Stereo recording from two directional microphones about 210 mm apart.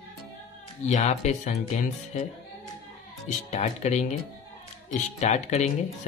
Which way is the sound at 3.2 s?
35° left (ahead or behind).